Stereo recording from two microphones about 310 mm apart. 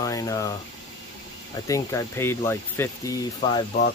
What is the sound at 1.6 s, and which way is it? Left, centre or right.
Speech, centre.